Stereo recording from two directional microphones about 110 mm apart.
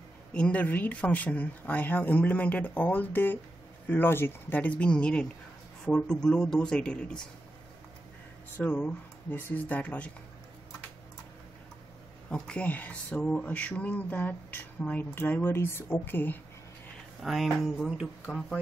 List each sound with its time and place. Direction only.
0.3 s speech: 10° left (ahead or behind)
8.5 s speech: 15° left (ahead or behind)
12.3 s speech: 10° left (ahead or behind)
17.2 s speech: centre (ahead or behind)
18.2 s speech: 10° left (ahead or behind)